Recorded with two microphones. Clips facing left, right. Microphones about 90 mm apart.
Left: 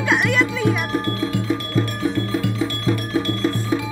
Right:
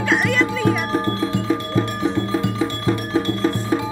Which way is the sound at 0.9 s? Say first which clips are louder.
Right 2 dB; 30° right (ahead or behind).